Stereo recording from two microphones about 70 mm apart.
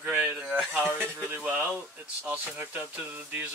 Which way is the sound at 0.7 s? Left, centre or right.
Right.